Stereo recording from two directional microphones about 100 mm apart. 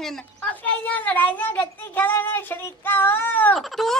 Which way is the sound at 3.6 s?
5° left (ahead or behind).